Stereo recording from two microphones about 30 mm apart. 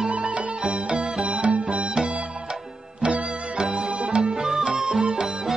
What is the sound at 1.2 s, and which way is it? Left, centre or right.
Music, right.